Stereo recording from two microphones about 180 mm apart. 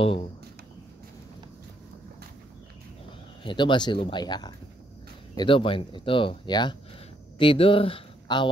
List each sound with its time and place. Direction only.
3.4 s speech: 25° left (ahead or behind)